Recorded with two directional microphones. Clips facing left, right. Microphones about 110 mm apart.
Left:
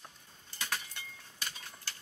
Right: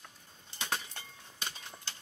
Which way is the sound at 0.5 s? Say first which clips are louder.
Right 2 dB; 20° right (ahead or behind).